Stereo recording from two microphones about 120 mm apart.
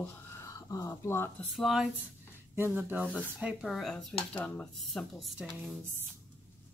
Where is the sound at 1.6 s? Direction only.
Centre (ahead or behind).